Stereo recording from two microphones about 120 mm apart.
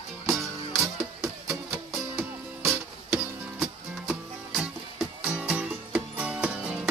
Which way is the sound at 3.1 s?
5° right (ahead or behind).